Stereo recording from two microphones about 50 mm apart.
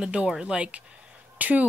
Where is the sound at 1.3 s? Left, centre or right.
Right.